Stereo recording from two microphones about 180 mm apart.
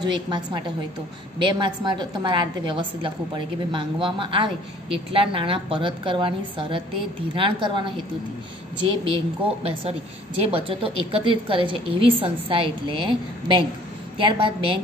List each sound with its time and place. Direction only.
0.0 s a woman's voice: 25° right (ahead or behind)